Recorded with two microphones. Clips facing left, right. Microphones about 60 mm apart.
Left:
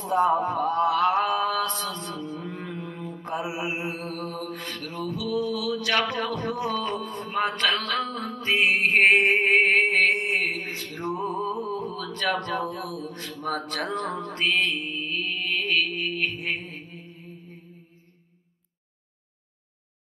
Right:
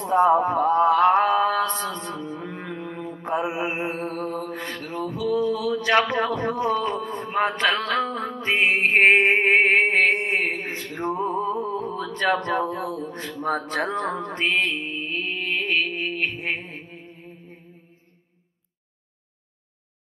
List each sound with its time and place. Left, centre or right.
0.1 s music: right
0.6 s a sound: right
1.4 s music: right
3.1 s mantra: right
4.8 s a sound: right
6.1 s music: right
6.8 s mantra: right
7.8 s music: right
8.8 s a sound: right
12.1 s speech: right
12.6 s mantra: right
13.7 s music: right
15.2 s mantra: right
17.1 s music: right